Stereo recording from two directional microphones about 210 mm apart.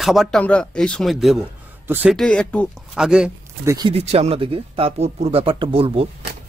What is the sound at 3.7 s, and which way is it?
Speech, 20° right (ahead or behind).